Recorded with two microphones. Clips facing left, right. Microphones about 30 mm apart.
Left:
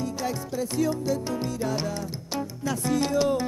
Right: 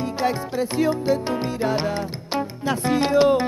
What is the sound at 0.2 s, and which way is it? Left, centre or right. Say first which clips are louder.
Music: right 6 dB; right.